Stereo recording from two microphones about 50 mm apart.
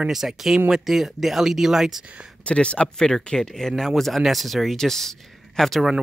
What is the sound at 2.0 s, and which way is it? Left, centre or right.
Speech, right.